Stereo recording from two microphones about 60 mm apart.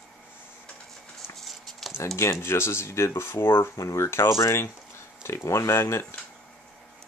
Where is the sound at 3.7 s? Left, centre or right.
Left.